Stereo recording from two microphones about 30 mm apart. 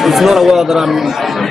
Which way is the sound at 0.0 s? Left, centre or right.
Centre.